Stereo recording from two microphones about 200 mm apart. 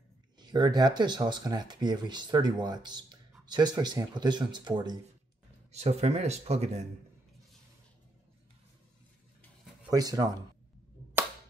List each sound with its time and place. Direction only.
0.4 s speech: 20° right (ahead or behind)
5.7 s speech: 35° right (ahead or behind)
9.8 s speech: 20° right (ahead or behind)